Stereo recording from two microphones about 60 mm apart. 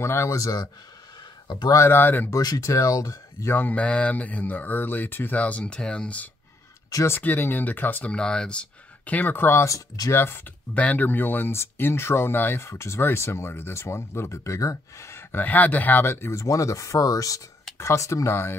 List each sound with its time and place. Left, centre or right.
0.0 s speech: left
0.3 s speech: left
1.9 s speech: left
2.3 s speech: left
3.5 s speech: left
7.1 s speech: left
8.1 s speech: centre; by 9.6 s left
9.6 s speech: left
10.1 s speech: left
10.7 s speech: left
11.5 s speech: left
15.4 s speech: left
17.7 s speech: left